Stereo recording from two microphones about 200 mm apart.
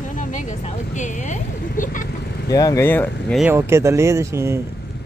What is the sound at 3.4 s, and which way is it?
Speech, 10° right (ahead or behind).